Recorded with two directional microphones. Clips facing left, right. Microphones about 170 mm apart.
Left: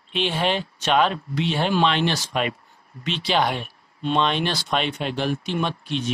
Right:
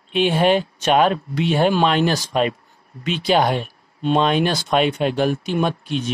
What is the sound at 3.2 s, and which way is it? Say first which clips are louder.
Speech: right 5 dB; 45° right (ahead or behind).